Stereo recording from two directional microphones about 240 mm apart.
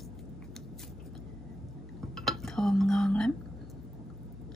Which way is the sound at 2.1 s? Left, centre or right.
Centre.